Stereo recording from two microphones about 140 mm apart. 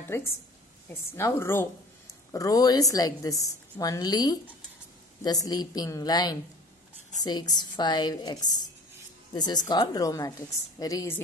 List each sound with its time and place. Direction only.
0.1 s a woman's voice: 20° left (ahead or behind)